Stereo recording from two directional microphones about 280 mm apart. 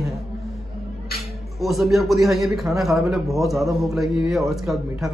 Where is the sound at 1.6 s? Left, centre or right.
Centre.